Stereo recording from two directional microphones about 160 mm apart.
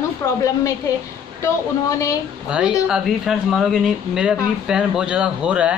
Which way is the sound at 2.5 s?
5° right (ahead or behind).